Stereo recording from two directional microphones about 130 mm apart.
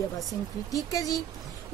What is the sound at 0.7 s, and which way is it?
Speech, 25° left (ahead or behind).